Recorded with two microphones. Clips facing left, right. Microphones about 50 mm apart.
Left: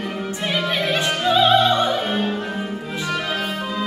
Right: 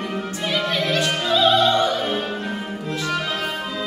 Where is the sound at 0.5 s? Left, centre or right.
Centre.